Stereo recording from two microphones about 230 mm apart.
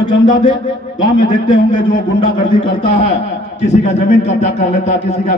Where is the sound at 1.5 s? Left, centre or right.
Left.